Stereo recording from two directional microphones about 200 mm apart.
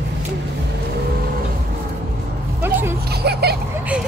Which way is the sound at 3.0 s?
55° right (ahead or behind).